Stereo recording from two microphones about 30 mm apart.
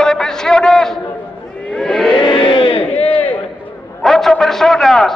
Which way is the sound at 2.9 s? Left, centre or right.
Left.